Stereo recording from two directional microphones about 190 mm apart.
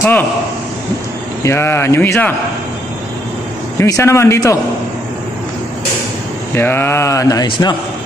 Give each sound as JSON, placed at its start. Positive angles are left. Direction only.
{"t": 1.4, "sound": "speech", "side_deg": 15}
{"t": 3.8, "sound": "speech", "side_deg": 15}
{"t": 6.5, "sound": "speech", "side_deg": 10}